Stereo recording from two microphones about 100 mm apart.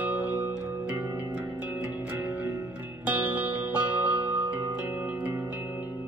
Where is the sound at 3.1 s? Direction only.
15° right (ahead or behind).